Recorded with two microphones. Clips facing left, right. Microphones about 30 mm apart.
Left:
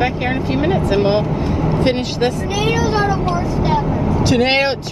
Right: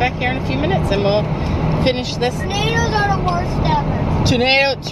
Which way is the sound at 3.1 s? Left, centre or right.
Right.